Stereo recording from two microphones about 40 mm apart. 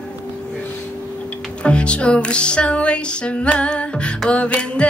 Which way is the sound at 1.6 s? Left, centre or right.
Left.